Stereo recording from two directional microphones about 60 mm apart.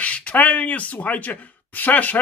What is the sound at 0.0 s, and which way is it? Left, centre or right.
Speech, left.